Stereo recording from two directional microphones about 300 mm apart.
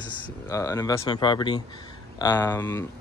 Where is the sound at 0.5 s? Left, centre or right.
Centre.